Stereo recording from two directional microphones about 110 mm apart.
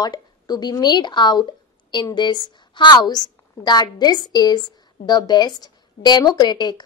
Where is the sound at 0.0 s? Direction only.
40° left (ahead or behind).